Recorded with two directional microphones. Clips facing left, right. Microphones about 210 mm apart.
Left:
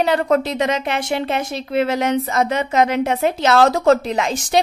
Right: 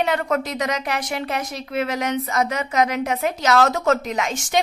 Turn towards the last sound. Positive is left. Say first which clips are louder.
# left 4 dB
turn(degrees=35)  # may be behind; listen again after turning